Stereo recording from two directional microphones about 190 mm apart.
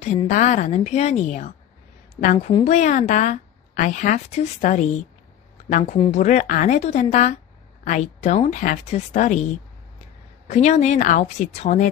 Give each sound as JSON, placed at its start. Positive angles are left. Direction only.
{"t": 0.0, "sound": "a woman's voice", "side_deg": 35}
{"t": 5.9, "sound": "a woman's voice", "side_deg": 35}
{"t": 10.5, "sound": "a woman's voice", "side_deg": 35}